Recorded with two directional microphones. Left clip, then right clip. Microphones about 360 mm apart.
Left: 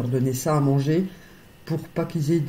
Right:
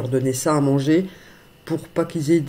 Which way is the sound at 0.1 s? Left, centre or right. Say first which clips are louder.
Right 4 dB; right.